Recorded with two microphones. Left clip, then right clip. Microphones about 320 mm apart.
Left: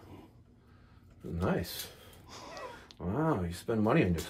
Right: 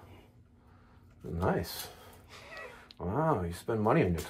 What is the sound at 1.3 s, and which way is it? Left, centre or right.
Speech, centre.